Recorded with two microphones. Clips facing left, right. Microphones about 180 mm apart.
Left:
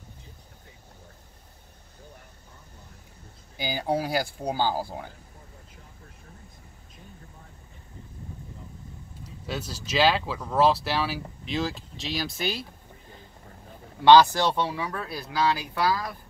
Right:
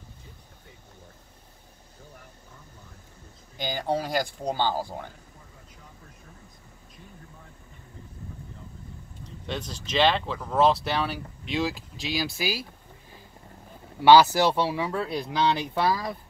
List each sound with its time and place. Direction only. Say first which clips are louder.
3.5 s speech: even; 10° left (ahead or behind)
9.2 s speech: even; 5° left (ahead or behind)
14.0 s speech: even; 10° right (ahead or behind)